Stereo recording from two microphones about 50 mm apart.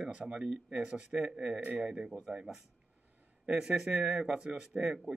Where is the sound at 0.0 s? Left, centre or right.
Centre.